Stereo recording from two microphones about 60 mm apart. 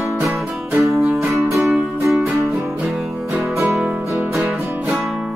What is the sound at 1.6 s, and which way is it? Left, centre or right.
Music, centre.